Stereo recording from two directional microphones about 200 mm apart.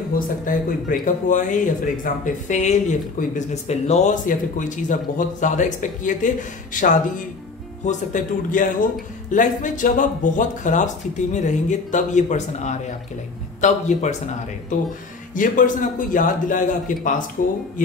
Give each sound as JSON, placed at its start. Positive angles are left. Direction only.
{"t": 0.1, "sound": "speech", "side_deg": 45}
{"t": 15.3, "sound": "speech", "side_deg": 40}